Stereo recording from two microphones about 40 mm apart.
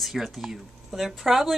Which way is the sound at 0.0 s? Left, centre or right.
Centre.